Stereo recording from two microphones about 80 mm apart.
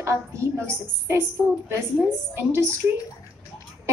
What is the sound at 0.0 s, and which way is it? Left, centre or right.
A woman's voice, right.